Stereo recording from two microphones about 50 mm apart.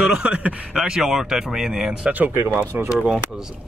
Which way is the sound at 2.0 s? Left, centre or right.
Right.